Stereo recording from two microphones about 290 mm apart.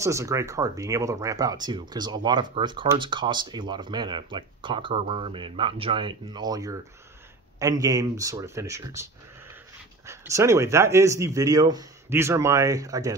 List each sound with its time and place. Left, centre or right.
0.0 s speech: centre